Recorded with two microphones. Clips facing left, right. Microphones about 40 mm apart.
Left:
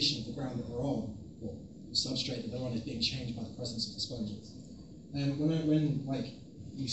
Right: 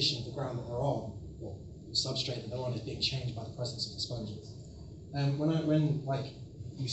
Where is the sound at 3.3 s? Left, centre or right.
Right.